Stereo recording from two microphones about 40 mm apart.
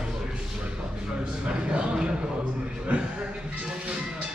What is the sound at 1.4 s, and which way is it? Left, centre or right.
Speech, right.